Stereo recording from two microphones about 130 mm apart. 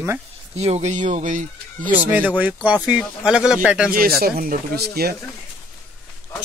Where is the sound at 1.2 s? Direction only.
85° right.